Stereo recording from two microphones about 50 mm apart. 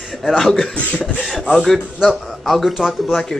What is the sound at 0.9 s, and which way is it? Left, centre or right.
Speech, left.